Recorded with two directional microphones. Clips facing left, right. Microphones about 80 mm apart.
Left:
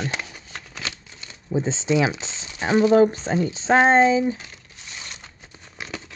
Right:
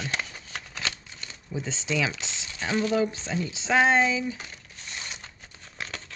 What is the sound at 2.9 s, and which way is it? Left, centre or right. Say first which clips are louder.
Speech: left 9 dB; left.